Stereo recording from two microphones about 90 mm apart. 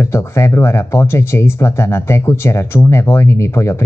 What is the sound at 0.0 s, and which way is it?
Speech, 30° left (ahead or behind).